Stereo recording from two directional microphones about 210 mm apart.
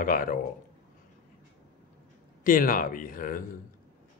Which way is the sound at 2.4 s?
40° left (ahead or behind).